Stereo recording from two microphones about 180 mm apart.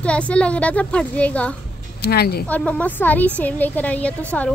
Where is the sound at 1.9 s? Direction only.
60° left (ahead or behind).